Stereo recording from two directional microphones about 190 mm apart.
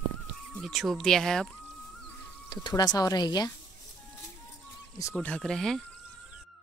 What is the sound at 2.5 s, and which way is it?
Speech, 20° left (ahead or behind).